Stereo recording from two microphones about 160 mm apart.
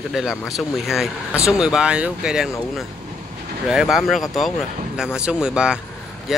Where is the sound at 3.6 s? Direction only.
5° right (ahead or behind).